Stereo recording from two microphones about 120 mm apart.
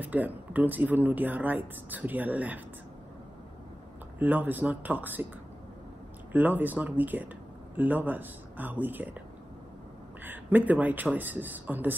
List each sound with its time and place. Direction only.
0.0 s speech: 15° right (ahead or behind)
4.2 s speech: 15° right (ahead or behind)
6.3 s speech: 15° right (ahead or behind)
10.2 s speech: 15° right (ahead or behind)